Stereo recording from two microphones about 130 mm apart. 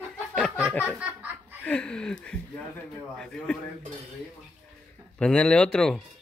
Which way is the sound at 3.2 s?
5° left (ahead or behind).